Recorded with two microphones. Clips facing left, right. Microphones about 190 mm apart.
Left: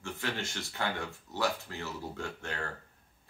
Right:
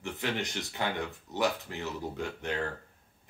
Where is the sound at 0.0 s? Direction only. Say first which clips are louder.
Right 3 dB; 20° right (ahead or behind).